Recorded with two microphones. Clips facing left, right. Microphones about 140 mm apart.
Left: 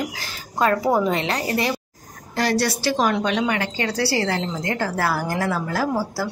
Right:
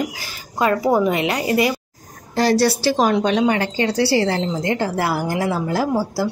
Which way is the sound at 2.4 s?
30° right (ahead or behind).